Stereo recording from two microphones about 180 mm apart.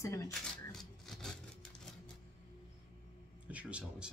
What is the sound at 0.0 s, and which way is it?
Speech, 15° left (ahead or behind).